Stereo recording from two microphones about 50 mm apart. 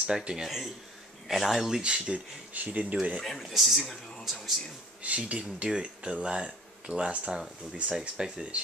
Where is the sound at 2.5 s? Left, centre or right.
Right.